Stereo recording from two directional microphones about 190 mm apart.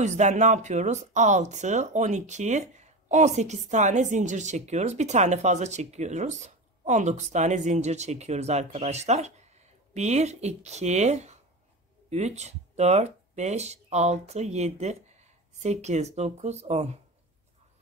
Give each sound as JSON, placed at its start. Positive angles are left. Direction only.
{"t": 0.0, "sound": "speech", "side_deg": -40}